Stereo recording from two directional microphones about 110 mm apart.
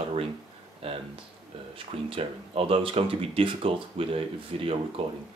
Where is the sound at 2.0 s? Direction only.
55° right (ahead or behind).